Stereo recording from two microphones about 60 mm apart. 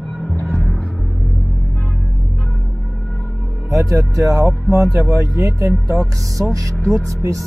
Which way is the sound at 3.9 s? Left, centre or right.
Right.